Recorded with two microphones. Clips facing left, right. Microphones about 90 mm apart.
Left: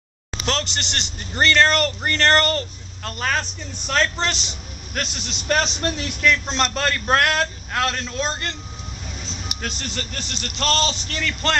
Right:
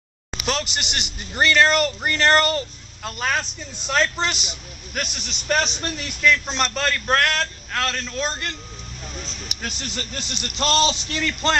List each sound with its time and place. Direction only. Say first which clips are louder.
0.5 s a man's voice: even; 10° right (ahead or behind); by 8.2 s 10° left (ahead or behind)
8.2 s speech: left 1 dB; centre (ahead or behind)
9.8 s a man's voice: left 1 dB; 15° right (ahead or behind)